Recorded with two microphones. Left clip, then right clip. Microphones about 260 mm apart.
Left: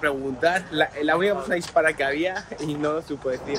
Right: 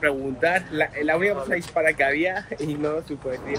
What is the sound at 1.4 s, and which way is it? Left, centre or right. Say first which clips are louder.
Speech: left 2 dB; left.